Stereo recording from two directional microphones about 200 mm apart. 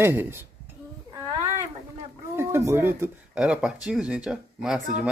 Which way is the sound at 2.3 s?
10° right (ahead or behind).